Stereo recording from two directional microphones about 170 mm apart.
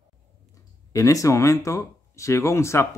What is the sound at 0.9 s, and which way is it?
Speech, 20° left (ahead or behind).